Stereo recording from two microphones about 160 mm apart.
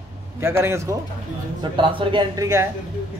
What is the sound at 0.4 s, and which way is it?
Speech, 15° right (ahead or behind).